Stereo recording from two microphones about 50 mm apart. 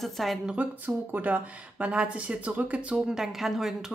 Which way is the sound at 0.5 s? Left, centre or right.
Right.